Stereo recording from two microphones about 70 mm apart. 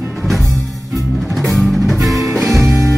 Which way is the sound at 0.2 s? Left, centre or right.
Centre.